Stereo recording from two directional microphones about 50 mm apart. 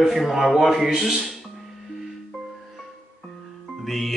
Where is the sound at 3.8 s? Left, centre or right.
Centre.